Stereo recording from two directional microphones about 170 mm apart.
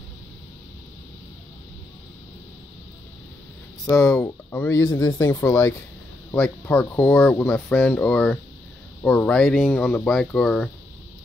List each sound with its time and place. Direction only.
3.8 s speech: 20° left (ahead or behind)
4.6 s speech: 20° left (ahead or behind); by 10.7 s 5° left (ahead or behind)